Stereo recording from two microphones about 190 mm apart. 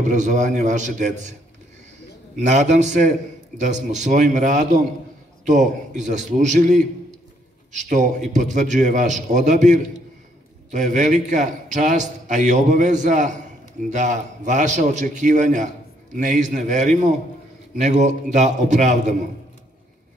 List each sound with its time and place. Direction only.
0.0 s a man's voice: 40° right (ahead or behind)
2.3 s a man's voice: 40° right (ahead or behind)
8.3 s a man's voice: 40° right (ahead or behind)